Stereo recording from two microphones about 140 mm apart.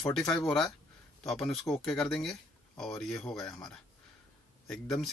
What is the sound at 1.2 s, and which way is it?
Speech, centre (ahead or behind).